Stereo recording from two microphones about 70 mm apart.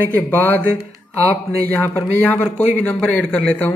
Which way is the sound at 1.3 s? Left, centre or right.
Right.